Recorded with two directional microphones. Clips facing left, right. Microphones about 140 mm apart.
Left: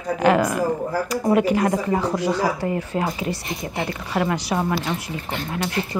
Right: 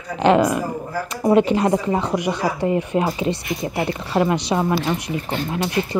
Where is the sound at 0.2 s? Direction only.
20° right (ahead or behind).